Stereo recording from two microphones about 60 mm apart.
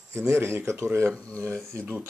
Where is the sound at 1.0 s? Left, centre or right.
Centre.